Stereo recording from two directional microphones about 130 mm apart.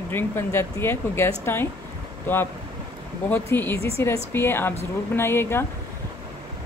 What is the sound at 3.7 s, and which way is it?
Speech, 50° right (ahead or behind).